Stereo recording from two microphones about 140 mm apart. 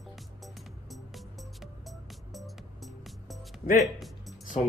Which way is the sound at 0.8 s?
Centre (ahead or behind).